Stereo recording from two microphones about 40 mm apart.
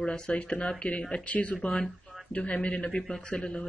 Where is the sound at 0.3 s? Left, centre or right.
Left.